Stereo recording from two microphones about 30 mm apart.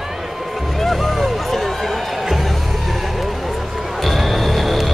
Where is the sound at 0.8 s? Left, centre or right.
Centre.